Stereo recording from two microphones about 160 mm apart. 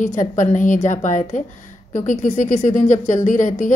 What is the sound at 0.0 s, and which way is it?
A woman's voice, 55° left (ahead or behind).